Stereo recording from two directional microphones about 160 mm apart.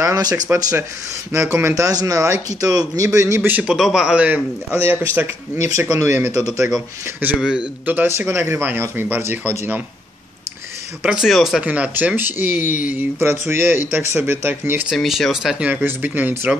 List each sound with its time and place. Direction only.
0.0 s speech: 25° right (ahead or behind)
7.2 s speech: 10° right (ahead or behind)
11.0 s speech: 5° right (ahead or behind)
15.0 s speech: centre (ahead or behind)